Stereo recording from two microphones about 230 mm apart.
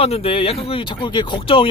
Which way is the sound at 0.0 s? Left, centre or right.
Left.